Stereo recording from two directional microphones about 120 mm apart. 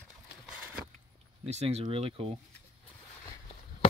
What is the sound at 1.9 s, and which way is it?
Speech, 50° right (ahead or behind).